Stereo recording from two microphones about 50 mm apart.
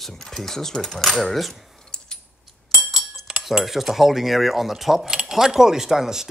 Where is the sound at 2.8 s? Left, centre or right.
Centre.